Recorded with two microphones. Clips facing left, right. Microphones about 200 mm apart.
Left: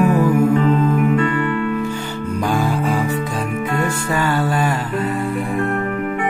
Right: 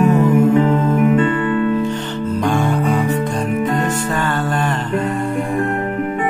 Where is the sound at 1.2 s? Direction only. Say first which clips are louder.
Right 3 dB; 25° right (ahead or behind).